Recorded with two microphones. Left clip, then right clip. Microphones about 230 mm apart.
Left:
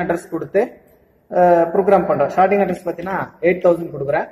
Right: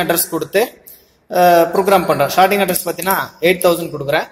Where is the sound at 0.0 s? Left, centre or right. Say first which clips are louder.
Right 4 dB; right.